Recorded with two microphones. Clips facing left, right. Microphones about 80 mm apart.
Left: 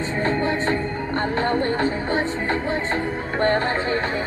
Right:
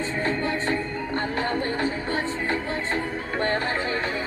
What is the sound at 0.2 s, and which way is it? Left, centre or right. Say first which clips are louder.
Music: left 5 dB; left.